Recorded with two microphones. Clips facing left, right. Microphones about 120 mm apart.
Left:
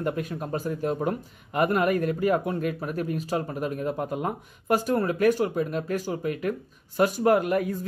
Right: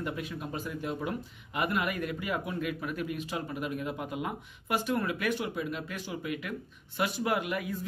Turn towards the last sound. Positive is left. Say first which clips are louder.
# left 8 dB
turn(degrees=45)  # may be behind; listen again after turning